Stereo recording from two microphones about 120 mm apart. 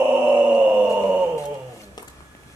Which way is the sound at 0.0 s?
15° right (ahead or behind).